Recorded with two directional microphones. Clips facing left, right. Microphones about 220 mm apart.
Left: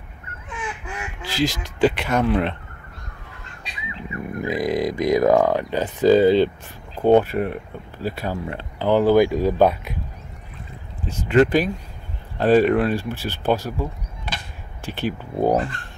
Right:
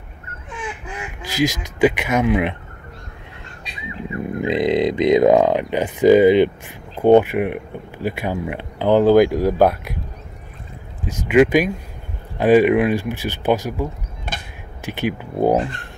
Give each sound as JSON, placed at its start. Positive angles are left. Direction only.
{"t": 1.2, "sound": "speech", "side_deg": -15}
{"t": 4.1, "sound": "speech", "side_deg": -25}
{"t": 11.2, "sound": "speech", "side_deg": -10}
{"t": 14.3, "sound": "a sound", "side_deg": -50}
{"t": 14.9, "sound": "speech", "side_deg": -15}